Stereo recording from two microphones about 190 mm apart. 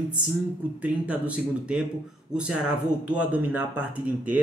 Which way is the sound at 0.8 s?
5° right (ahead or behind).